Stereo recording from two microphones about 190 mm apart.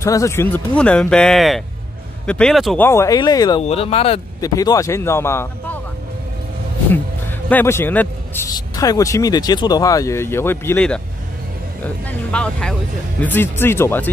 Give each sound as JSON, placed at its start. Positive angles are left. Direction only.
{"t": 0.0, "sound": "speech", "side_deg": 15}
{"t": 2.8, "sound": "speech", "side_deg": 15}
{"t": 3.6, "sound": "speech", "side_deg": 30}
{"t": 4.4, "sound": "speech", "side_deg": 20}
{"t": 7.4, "sound": "a man's voice", "side_deg": 10}